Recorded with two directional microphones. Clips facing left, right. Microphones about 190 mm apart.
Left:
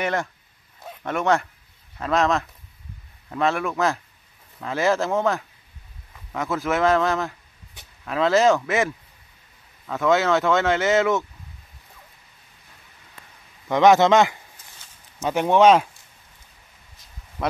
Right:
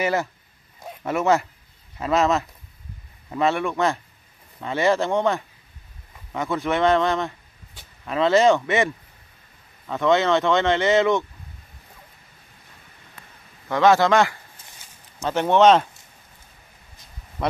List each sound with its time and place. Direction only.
0.0 s speech: 5° right (ahead or behind)
13.7 s speech: 20° left (ahead or behind)
17.4 s speech: centre (ahead or behind)